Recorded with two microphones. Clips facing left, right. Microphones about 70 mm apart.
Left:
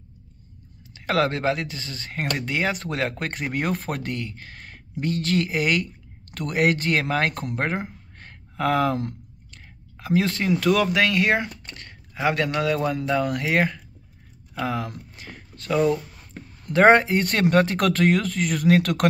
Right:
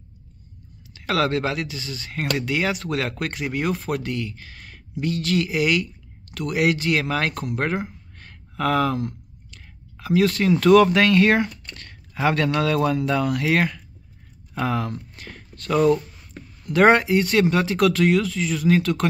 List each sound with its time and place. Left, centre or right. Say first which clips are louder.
0.9 s speech: right 1 dB; left
8.2 s a sound: right 1 dB; left
8.9 s clicking: right 1 dB; left
10.5 s speech: right 6 dB; centre
13.2 s speech: right 2 dB; left
13.5 s speech: right 1 dB; centre
14.5 s speech: right 2 dB; centre
15.1 s a sound: right 1 dB; left
16.7 s speech: even; left